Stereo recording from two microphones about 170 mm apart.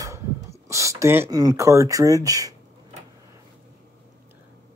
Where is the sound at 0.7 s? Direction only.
15° right (ahead or behind).